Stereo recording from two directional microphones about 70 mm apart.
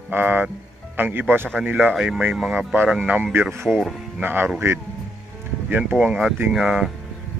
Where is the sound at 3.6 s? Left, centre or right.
Centre.